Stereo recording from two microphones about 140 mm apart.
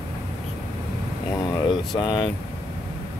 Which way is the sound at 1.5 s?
30° left (ahead or behind).